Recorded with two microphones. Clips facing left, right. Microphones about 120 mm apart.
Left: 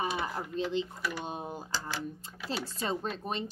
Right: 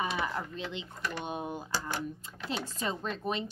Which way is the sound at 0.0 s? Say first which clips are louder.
Even; 35° left (ahead or behind).